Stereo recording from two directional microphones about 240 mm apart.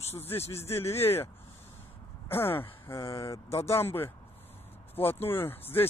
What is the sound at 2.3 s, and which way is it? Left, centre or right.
Speech, centre.